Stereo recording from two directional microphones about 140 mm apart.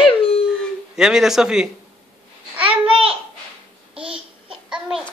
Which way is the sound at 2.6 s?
40° right (ahead or behind).